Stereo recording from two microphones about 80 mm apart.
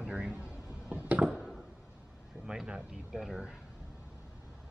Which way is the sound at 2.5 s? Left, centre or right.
Centre.